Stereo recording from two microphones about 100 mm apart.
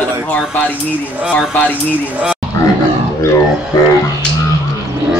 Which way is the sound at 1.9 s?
15° right (ahead or behind).